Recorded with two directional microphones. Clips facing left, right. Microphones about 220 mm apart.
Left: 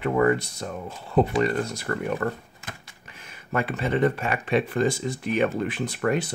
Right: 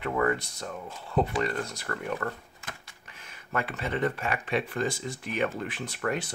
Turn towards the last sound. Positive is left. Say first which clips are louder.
# left 6 dB
turn(degrees=15)  # may be behind; listen again after turning